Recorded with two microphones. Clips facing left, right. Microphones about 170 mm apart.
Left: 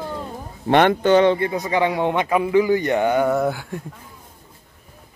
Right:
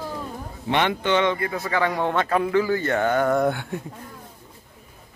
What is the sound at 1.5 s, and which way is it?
A man's voice, 20° left (ahead or behind).